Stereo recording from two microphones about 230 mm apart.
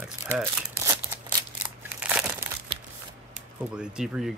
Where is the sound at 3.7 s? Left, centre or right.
Centre.